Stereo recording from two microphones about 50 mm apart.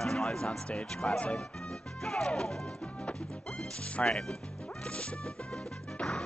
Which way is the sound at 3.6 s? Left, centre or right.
Centre.